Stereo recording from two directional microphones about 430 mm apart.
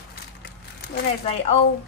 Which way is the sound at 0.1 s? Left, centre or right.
Left.